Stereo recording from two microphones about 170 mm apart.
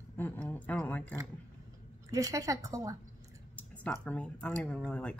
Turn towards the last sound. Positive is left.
turn(degrees=5)  # may be behind; listen again after turning